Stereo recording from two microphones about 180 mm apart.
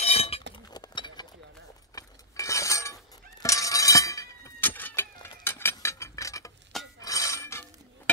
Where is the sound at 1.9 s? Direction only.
15° left (ahead or behind).